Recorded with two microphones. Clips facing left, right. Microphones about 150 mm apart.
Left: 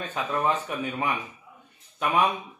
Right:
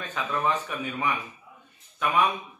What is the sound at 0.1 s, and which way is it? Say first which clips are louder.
Speech: left 1 dB; 20° left (ahead or behind).